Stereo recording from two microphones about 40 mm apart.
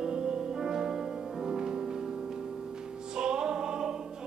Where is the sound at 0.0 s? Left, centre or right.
Centre.